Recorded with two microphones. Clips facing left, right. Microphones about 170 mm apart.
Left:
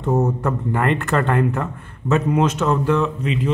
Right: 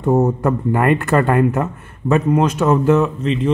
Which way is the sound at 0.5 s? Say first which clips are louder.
Right 5 dB; 5° right (ahead or behind).